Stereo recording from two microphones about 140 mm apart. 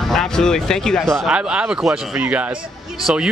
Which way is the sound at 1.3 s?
5° right (ahead or behind).